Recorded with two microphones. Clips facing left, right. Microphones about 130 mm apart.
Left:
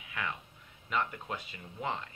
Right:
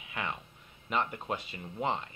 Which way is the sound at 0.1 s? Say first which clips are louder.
Right 1 dB; 25° right (ahead or behind).